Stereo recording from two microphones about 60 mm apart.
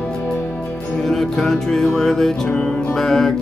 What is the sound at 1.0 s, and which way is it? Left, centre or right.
Music, centre.